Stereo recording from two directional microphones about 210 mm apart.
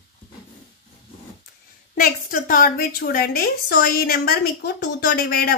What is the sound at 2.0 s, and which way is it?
A woman's voice, 40° left (ahead or behind).